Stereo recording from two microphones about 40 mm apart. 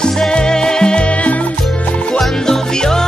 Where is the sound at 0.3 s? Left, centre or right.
Centre.